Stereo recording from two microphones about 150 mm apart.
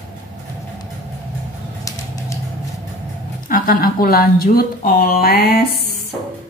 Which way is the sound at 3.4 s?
70° left (ahead or behind).